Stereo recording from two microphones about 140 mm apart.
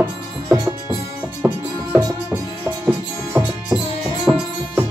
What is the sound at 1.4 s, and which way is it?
Music, 15° right (ahead or behind).